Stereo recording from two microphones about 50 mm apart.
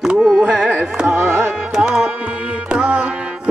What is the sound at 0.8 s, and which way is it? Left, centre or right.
Carnatic music, centre.